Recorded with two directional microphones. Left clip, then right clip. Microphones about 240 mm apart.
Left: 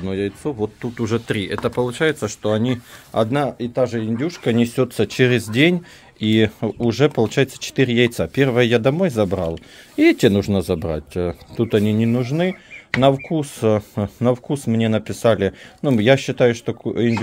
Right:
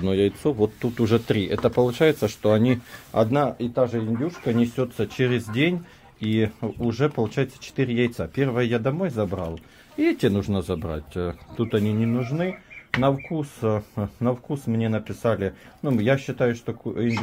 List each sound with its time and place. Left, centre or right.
0.0 s speech: centre
3.1 s speech: centre
3.7 s speech: left